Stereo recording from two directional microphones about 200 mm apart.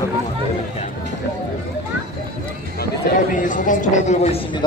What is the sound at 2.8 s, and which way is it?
Speech, 45° left (ahead or behind).